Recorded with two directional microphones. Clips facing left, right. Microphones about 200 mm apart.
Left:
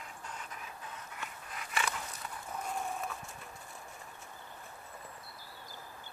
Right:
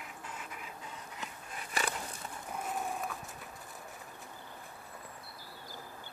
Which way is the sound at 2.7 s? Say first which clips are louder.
Right 1 dB; centre (ahead or behind).